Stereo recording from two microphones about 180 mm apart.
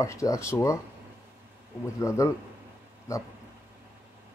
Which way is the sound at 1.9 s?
15° left (ahead or behind).